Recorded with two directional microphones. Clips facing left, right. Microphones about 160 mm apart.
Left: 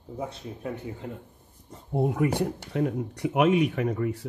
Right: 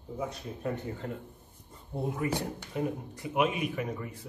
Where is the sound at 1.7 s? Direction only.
70° left (ahead or behind).